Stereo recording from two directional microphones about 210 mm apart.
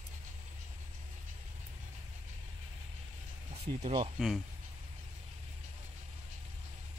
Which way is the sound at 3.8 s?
25° right (ahead or behind).